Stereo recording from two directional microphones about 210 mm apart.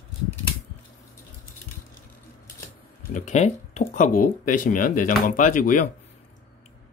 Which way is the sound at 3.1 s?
35° left (ahead or behind).